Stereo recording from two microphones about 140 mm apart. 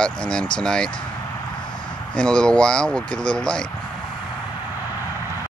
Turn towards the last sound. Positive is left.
turn(degrees=5)  # may be behind; listen again after turning